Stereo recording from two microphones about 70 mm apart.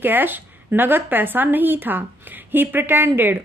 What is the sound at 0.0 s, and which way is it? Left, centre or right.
A woman's voice, right.